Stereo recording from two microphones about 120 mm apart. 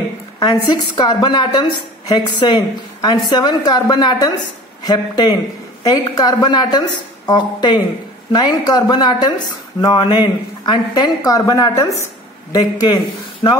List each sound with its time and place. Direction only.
0.4 s a woman's voice: 40° left (ahead or behind)